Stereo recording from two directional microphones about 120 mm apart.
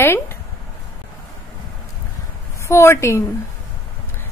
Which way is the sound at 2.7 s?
20° left (ahead or behind).